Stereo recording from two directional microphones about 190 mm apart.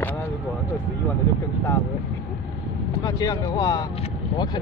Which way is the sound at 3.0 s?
20° left (ahead or behind).